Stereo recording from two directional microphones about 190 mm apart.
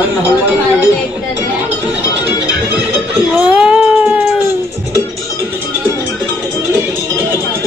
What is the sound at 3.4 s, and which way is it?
Cat, 5° right (ahead or behind).